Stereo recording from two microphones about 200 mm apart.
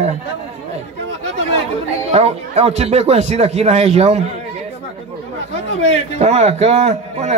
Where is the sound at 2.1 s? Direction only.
30° right (ahead or behind).